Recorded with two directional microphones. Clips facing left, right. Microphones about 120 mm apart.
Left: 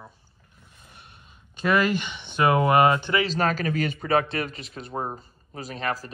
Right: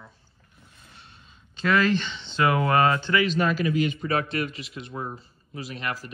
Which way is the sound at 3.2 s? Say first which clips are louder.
Right 1 dB; 40° left (ahead or behind).